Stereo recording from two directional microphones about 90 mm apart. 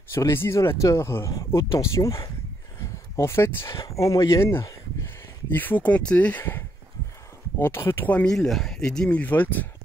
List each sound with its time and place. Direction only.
0.1 s speech: 30° left (ahead or behind)
3.7 s speech: 40° left (ahead or behind); by 9.7 s 20° left (ahead or behind)